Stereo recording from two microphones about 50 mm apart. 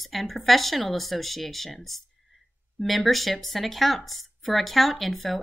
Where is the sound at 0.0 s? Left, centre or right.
Centre.